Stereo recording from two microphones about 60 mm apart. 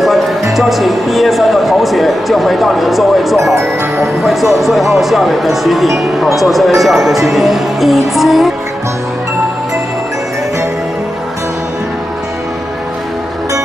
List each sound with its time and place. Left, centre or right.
0.5 s speech: centre